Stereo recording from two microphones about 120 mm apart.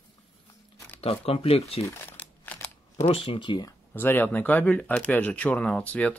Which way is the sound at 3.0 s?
50° left (ahead or behind).